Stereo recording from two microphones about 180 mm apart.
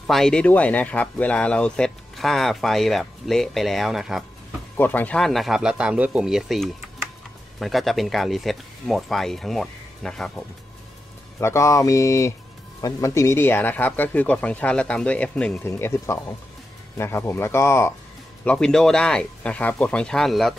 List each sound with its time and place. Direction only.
0.0 s speech: centre (ahead or behind)
4.7 s speech: 10° left (ahead or behind)
11.3 s speech: 15° left (ahead or behind); by 20.5 s centre (ahead or behind)